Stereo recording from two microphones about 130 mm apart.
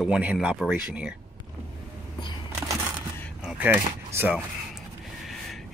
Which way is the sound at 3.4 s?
15° right (ahead or behind).